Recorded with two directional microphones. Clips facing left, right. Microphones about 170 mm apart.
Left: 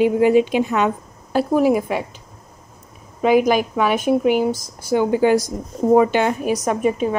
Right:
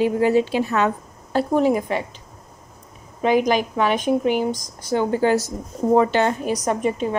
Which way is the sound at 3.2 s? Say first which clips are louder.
Left 3 dB; 10° left (ahead or behind).